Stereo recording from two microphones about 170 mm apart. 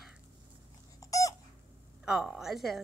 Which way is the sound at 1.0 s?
20° left (ahead or behind).